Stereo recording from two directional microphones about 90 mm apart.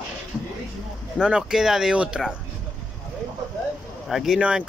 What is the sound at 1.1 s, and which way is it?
Speech, 10° right (ahead or behind).